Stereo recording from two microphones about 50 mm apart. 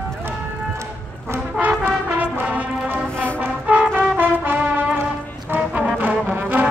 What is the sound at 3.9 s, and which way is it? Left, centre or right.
Brass instrument, right.